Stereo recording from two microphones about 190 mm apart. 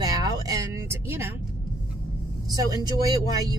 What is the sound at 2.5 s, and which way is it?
Speech, 20° right (ahead or behind).